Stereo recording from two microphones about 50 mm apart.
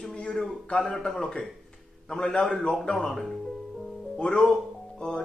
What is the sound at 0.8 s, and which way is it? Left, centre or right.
A man's voice, centre.